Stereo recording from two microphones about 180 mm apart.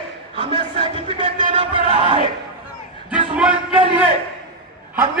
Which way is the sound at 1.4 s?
30° right (ahead or behind).